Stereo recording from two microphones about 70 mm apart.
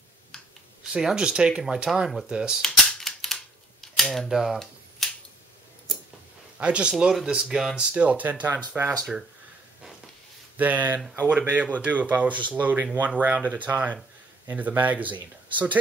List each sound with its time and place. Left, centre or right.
0.8 s speech: centre
2.6 s cap gun: centre
3.8 s camera: centre
4.3 s a sound: centre
6.6 s speech: centre
7.9 s speech: right
10.6 s speech: right